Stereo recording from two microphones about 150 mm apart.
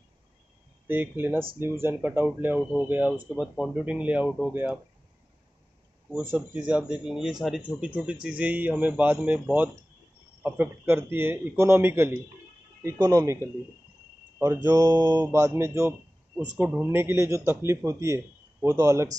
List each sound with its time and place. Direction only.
0.8 s speech: 15° right (ahead or behind)
6.3 s a man's voice: 10° right (ahead or behind)
16.6 s a man's voice: 10° right (ahead or behind)